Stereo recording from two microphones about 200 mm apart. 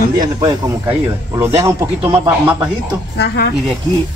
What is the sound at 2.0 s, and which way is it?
Speech, 30° right (ahead or behind).